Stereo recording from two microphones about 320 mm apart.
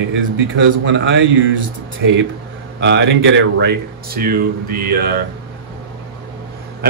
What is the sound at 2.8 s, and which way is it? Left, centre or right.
Speech, right.